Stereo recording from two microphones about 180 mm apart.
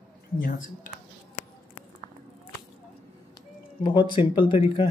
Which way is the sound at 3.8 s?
25° left (ahead or behind).